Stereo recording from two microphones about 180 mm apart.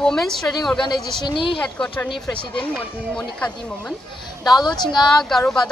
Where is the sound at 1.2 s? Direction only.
30° left (ahead or behind).